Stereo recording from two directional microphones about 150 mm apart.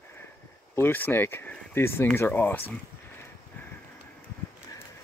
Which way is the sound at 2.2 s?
10° left (ahead or behind).